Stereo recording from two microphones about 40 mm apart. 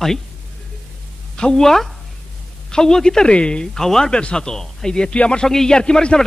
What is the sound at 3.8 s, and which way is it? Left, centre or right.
A man's voice, centre.